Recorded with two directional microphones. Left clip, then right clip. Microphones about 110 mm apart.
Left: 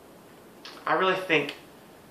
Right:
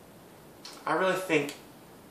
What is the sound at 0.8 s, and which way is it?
Speech, 20° right (ahead or behind).